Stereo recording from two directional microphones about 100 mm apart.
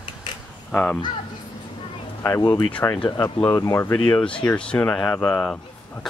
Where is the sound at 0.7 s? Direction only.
10° left (ahead or behind).